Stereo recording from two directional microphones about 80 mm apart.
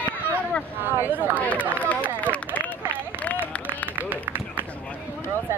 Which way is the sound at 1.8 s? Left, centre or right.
Centre.